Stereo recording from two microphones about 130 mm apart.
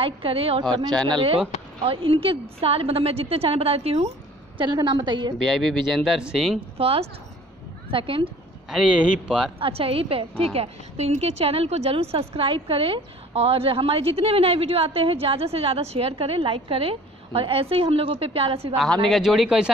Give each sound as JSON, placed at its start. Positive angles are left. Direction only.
{"t": 0.0, "sound": "a woman's voice", "side_deg": -45}
{"t": 4.6, "sound": "a woman's voice", "side_deg": -35}
{"t": 5.5, "sound": "speech", "side_deg": 0}
{"t": 6.8, "sound": "a woman's voice", "side_deg": -50}
{"t": 8.6, "sound": "a man's voice", "side_deg": -5}
{"t": 9.6, "sound": "a woman's voice", "side_deg": -45}
{"t": 19.0, "sound": "speech", "side_deg": 0}